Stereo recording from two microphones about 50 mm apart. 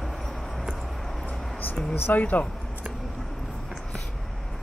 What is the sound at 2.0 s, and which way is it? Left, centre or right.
Speech, left.